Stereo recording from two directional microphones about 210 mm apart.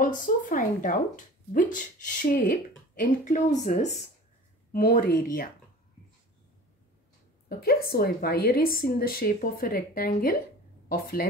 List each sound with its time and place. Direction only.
0.0 s a woman's voice: 40° left (ahead or behind)
7.4 s a woman's voice: 45° left (ahead or behind)